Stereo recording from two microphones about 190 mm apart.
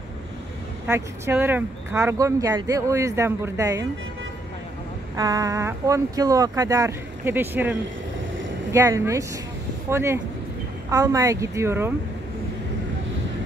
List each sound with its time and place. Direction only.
0.8 s speech: 10° right (ahead or behind)
5.1 s speech: 20° right (ahead or behind)
8.7 s speech: 15° right (ahead or behind)